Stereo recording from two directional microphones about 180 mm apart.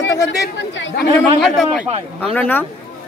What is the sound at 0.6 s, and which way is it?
Speech, 80° left.